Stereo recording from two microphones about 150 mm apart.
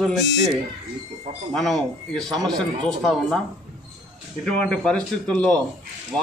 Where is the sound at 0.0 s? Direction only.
Centre (ahead or behind).